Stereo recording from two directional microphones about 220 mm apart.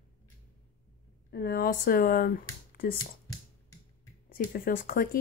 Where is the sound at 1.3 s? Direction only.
45° left (ahead or behind).